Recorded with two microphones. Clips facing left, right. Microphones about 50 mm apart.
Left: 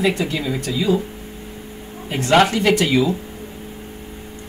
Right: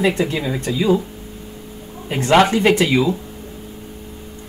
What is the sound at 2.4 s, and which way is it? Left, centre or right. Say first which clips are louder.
Speech: right 2 dB; right.